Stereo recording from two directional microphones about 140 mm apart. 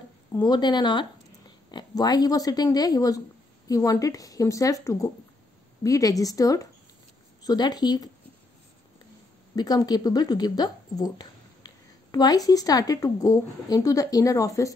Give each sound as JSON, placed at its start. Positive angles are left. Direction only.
{"t": 0.3, "sound": "speech", "side_deg": 30}
{"t": 9.6, "sound": "speech", "side_deg": 30}